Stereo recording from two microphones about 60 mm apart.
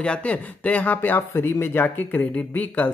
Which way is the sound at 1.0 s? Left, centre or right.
Left.